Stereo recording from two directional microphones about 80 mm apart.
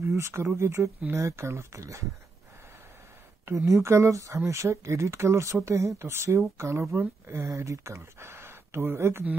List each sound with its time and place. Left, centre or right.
0.0 s speech: right
3.4 s speech: right